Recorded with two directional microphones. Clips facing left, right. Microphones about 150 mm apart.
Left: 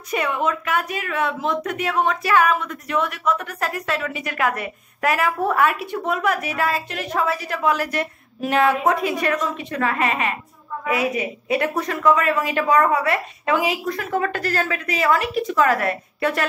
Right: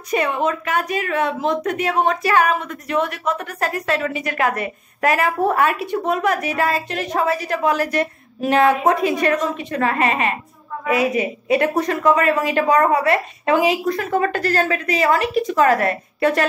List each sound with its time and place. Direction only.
0.1 s a woman's voice: 35° right (ahead or behind)
9.0 s a woman's voice: 5° left (ahead or behind)
9.3 s a woman's voice: 35° right (ahead or behind)
10.9 s a woman's voice: 5° left (ahead or behind)
11.5 s a woman's voice: 40° right (ahead or behind)